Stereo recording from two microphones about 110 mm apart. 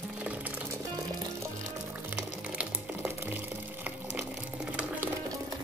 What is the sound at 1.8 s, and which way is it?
Music, 15° right (ahead or behind).